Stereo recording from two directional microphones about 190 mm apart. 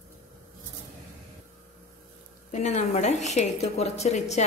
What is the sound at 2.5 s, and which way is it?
A woman's voice, 40° left (ahead or behind).